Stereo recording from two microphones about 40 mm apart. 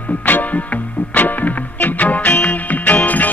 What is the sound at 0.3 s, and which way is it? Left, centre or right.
Music, left.